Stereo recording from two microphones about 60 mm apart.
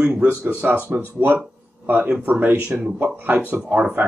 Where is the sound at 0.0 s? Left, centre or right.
Centre.